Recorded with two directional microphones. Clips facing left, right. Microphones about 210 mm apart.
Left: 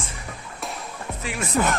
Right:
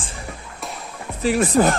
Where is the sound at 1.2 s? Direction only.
35° right (ahead or behind).